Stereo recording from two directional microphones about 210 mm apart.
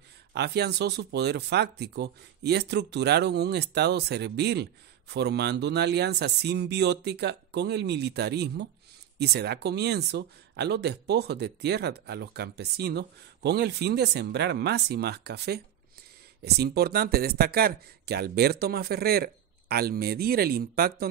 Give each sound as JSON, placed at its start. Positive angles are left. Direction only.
{"t": 0.3, "sound": "speech", "side_deg": -50}